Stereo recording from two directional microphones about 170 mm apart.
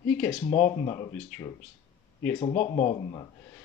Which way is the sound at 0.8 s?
25° left (ahead or behind).